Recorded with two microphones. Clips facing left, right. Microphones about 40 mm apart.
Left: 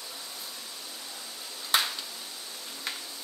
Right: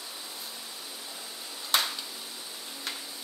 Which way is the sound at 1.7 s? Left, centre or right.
Centre.